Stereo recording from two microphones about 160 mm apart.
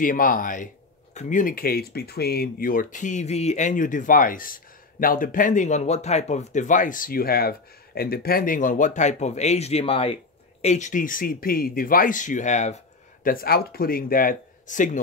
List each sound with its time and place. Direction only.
0.0 s speech: 60° left (ahead or behind); by 10.1 s 35° left (ahead or behind)
10.6 s speech: 45° left (ahead or behind)
13.3 s speech: 70° left (ahead or behind)